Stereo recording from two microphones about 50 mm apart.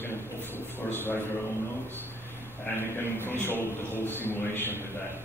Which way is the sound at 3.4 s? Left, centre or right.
Left.